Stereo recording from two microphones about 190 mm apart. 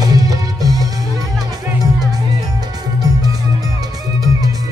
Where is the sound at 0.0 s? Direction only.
20° right (ahead or behind).